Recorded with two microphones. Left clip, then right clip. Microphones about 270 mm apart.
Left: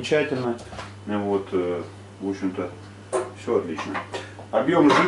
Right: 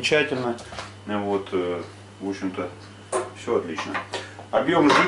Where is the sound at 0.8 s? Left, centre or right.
Centre.